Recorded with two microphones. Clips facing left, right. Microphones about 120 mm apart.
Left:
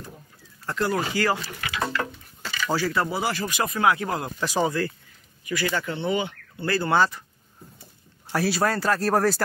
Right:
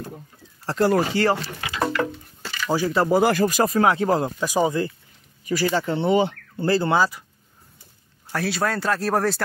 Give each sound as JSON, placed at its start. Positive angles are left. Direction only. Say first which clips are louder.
{"t": 0.7, "sound": "speech", "louder": "right 6 dB", "side_deg": -35}
{"t": 2.7, "sound": "speech", "louder": "right 3 dB", "side_deg": -15}
{"t": 3.1, "sound": "speech", "louder": "right 9 dB", "side_deg": -50}
{"t": 4.4, "sound": "speech", "louder": "right 3 dB", "side_deg": -15}
{"t": 5.5, "sound": "speech", "louder": "right 5 dB", "side_deg": -30}
{"t": 7.0, "sound": "speech", "louder": "right 1 dB", "side_deg": -5}
{"t": 8.3, "sound": "speech", "louder": "left 1 dB", "side_deg": 5}